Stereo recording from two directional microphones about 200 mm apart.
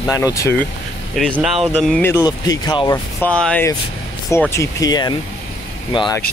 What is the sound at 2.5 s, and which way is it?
Speech, 20° left (ahead or behind).